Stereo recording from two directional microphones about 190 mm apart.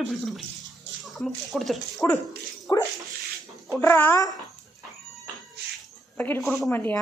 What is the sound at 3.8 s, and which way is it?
Speech, 10° left (ahead or behind).